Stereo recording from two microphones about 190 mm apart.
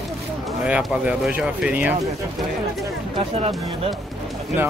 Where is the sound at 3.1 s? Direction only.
35° right (ahead or behind).